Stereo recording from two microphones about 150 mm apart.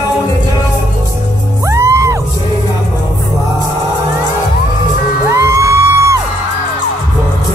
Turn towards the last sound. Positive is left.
turn(degrees=-20)  # may be behind; listen again after turning